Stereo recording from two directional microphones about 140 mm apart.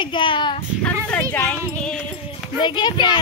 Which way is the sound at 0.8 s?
10° left (ahead or behind).